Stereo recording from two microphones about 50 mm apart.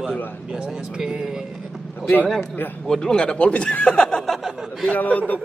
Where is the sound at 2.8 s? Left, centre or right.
Centre.